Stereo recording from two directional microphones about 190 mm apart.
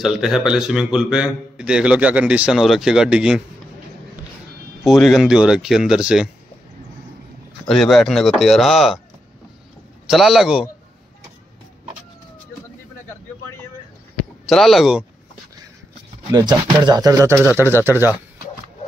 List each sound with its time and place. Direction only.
0.0 s a man's voice: centre (ahead or behind)
4.8 s a man's voice: centre (ahead or behind)
7.6 s a man's voice: centre (ahead or behind)
10.0 s a man's voice: centre (ahead or behind)
14.5 s a man's voice: centre (ahead or behind)
16.3 s speech: 20° right (ahead or behind)